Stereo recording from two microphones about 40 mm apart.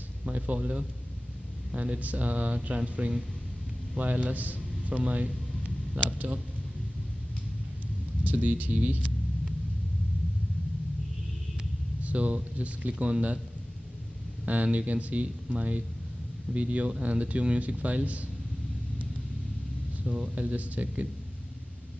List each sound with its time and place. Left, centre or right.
0.2 s speech: right
8.2 s speech: right
12.0 s speech: right
12.9 s speech: right
14.4 s speech: right
20.3 s speech: right